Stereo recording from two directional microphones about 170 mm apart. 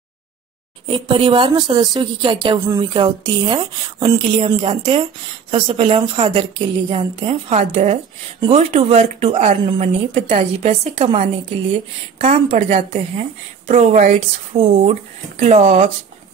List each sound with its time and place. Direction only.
0.8 s a woman's voice: 30° right (ahead or behind); by 14.2 s 50° right (ahead or behind)
14.5 s speech: 35° right (ahead or behind)